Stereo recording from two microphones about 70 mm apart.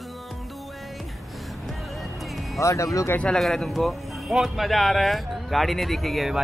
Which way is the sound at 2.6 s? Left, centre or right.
Left.